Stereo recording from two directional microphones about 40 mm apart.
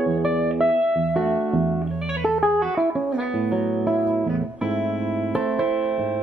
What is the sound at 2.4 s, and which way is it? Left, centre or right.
Music, centre.